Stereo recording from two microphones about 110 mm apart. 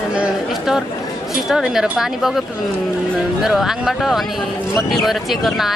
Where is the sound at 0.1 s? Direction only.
5° right (ahead or behind).